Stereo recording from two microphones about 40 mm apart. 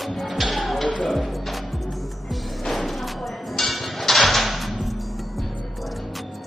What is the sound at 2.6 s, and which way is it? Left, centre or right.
Music, centre.